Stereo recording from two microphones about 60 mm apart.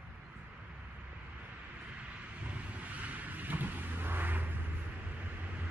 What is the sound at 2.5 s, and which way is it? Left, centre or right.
Vehicle, right.